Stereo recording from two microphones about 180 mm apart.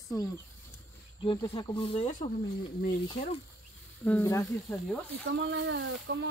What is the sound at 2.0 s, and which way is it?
Speech, 40° left (ahead or behind).